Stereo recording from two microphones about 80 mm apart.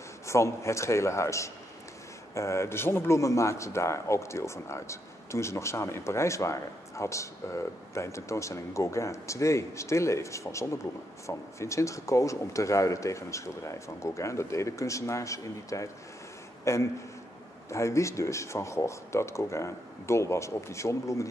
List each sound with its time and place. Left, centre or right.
0.3 s speech: left